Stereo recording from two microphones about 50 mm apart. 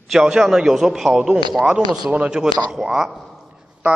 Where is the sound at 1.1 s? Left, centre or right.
Centre.